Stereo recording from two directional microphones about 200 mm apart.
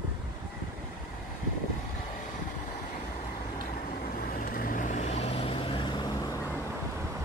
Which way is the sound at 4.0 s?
45° left (ahead or behind).